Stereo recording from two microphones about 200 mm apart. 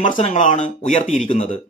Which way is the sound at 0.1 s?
35° left (ahead or behind).